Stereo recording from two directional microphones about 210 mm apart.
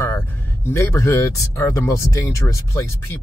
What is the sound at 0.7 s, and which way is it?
Speech, 10° left (ahead or behind).